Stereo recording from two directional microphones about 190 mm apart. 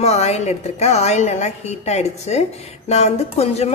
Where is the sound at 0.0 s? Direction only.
35° left (ahead or behind).